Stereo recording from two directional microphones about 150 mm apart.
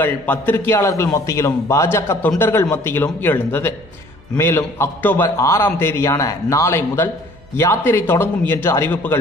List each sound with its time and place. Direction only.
0.0 s a man's voice: 15° left (ahead or behind)